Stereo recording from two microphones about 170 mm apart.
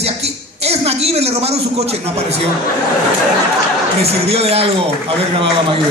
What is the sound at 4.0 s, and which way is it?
Speech, 35° right (ahead or behind).